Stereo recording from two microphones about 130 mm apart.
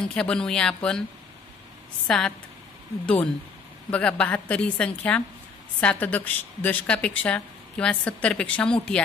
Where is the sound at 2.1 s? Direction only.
5° left (ahead or behind).